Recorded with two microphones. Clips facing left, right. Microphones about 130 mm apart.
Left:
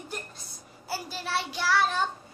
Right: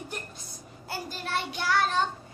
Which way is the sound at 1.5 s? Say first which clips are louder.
Left 1 dB; centre (ahead or behind).